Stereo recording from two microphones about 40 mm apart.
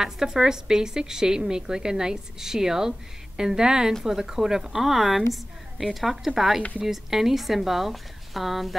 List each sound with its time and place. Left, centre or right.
0.0 s a woman's voice: centre